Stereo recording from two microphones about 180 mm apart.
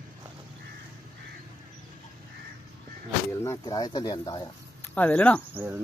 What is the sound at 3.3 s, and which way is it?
Speech, 15° left (ahead or behind).